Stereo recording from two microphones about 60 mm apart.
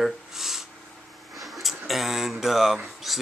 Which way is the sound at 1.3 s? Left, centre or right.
Centre.